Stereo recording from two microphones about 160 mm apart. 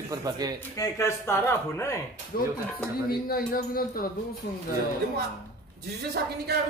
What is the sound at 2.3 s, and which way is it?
Speech, 65° left (ahead or behind).